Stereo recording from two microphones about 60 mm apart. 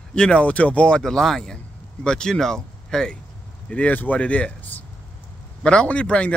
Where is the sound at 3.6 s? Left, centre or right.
Left.